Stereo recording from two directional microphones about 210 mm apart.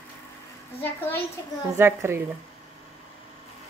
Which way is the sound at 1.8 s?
10° right (ahead or behind).